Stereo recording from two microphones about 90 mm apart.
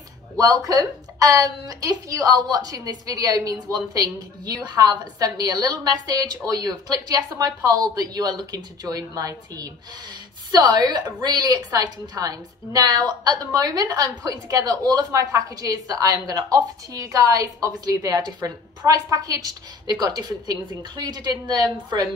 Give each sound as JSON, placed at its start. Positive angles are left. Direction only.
{"t": 0.7, "sound": "a woman's voice", "side_deg": -40}